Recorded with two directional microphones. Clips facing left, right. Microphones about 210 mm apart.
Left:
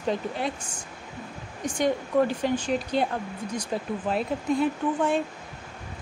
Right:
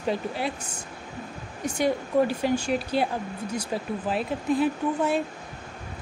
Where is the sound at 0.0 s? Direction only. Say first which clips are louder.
Even; 5° right (ahead or behind).